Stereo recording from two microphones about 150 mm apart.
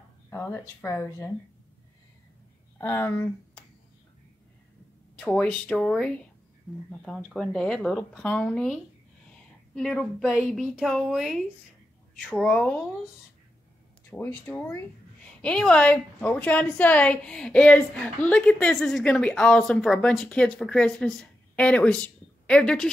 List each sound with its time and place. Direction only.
0.3 s a woman's voice: 15° left (ahead or behind)
2.8 s a woman's voice: 15° left (ahead or behind)
5.3 s a woman's voice: 5° left (ahead or behind)
9.8 s a woman's voice: 5° left (ahead or behind)
12.4 s a woman's voice: 10° left (ahead or behind)
14.1 s a woman's voice: 15° left (ahead or behind)